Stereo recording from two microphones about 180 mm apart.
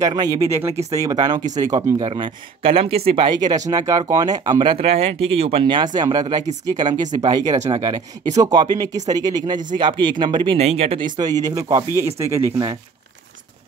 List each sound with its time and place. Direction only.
0.0 s speech: 20° right (ahead or behind)
2.0 s speech: 30° right (ahead or behind)
11.1 s speech: 20° right (ahead or behind)